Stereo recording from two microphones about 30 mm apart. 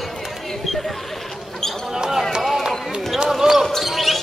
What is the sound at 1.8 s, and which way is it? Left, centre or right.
Speech, centre.